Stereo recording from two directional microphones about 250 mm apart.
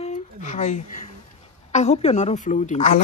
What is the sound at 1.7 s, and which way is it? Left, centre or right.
A woman's voice, left.